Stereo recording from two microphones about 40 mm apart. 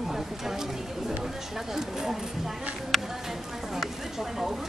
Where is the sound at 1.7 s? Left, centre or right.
Centre.